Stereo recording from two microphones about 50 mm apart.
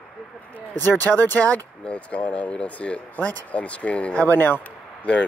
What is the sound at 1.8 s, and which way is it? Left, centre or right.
Speech, left.